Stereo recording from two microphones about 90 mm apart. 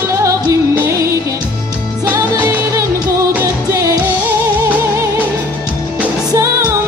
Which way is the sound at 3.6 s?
40° right (ahead or behind).